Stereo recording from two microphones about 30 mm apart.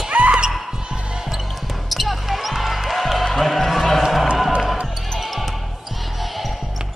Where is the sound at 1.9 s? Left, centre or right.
Centre.